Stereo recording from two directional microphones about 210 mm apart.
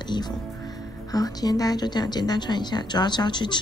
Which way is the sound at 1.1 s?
20° left (ahead or behind).